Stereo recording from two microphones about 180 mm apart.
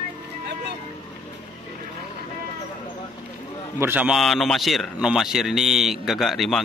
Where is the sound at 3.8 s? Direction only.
10° right (ahead or behind).